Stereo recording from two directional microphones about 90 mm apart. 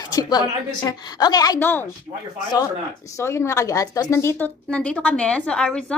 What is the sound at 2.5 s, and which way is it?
Speech, 35° left (ahead or behind).